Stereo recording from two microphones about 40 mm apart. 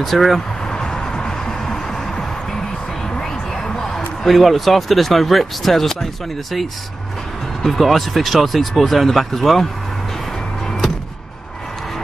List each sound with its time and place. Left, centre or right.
0.0 s speech: centre
0.7 s music: centre
3.2 s a sound: centre
4.2 s speech: centre
7.6 s speech: centre